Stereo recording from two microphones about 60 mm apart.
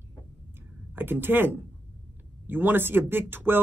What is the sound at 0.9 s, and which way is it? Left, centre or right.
Speech, right.